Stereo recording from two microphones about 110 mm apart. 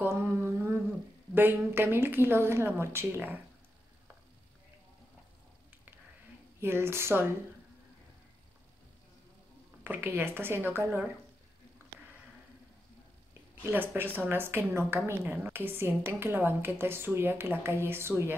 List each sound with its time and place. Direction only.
0.0 s a sound: 20° right (ahead or behind)
1.3 s speech: 20° right (ahead or behind)
6.6 s speech: 20° right (ahead or behind)
9.8 s speech: 20° right (ahead or behind)
13.7 s speech: 20° right (ahead or behind)